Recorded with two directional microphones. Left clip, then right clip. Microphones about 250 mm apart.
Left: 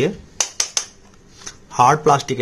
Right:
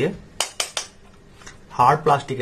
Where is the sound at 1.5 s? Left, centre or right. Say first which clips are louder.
Left 3 dB; left.